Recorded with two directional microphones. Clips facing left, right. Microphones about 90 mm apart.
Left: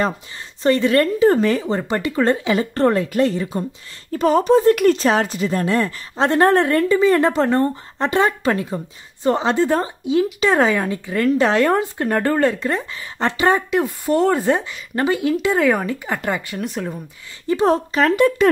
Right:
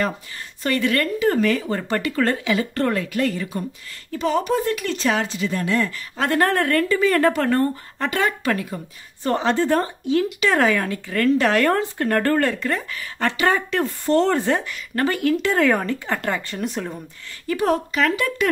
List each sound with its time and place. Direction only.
0.6 s a woman's voice: 30° left (ahead or behind)
4.1 s a woman's voice: 40° left (ahead or behind); by 17.0 s centre (ahead or behind)
17.5 s a woman's voice: 30° left (ahead or behind)